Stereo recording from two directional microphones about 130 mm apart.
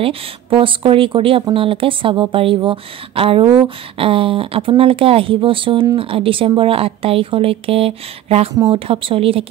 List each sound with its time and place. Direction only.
0.0 s speech: 45° right (ahead or behind)